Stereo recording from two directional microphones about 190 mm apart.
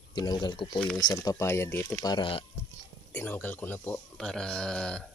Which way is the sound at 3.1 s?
10° left (ahead or behind).